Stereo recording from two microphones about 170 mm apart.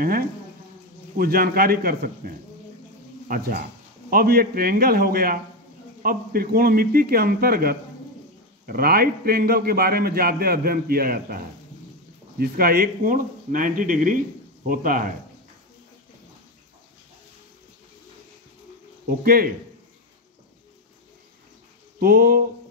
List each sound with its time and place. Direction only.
1.1 s a man's voice: 60° right (ahead or behind)
19.0 s a man's voice: 60° right (ahead or behind)
22.0 s a man's voice: 60° right (ahead or behind)